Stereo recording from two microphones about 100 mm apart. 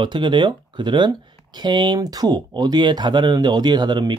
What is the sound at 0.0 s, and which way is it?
Speech, 50° right (ahead or behind).